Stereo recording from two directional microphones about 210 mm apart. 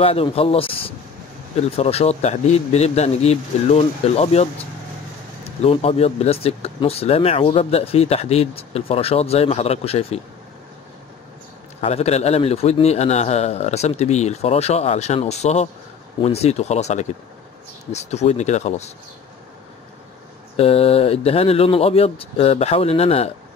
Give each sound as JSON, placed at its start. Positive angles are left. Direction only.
{"t": 0.0, "sound": "a man's voice", "side_deg": 25}
{"t": 5.6, "sound": "speech", "side_deg": 30}
{"t": 11.8, "sound": "a man's voice", "side_deg": 30}
{"t": 20.5, "sound": "speech", "side_deg": 30}